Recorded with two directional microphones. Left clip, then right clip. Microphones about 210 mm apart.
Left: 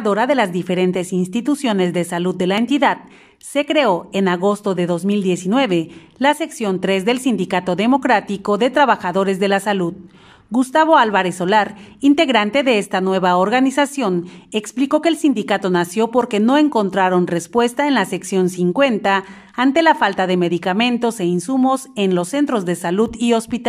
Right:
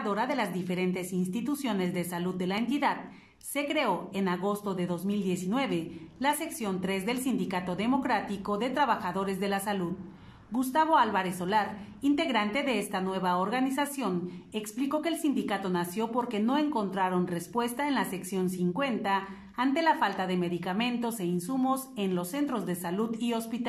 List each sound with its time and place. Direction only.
0.0 s a woman's voice: 40° left (ahead or behind)